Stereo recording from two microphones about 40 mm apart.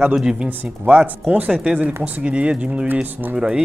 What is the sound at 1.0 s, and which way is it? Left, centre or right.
A man's voice, right.